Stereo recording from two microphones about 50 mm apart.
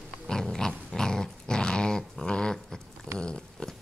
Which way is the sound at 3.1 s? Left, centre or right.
Centre.